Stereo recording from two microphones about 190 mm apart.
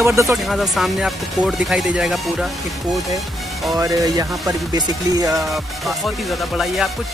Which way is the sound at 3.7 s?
20° right (ahead or behind).